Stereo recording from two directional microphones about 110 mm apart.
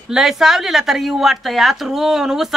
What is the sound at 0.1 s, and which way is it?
A woman's voice, 5° right (ahead or behind).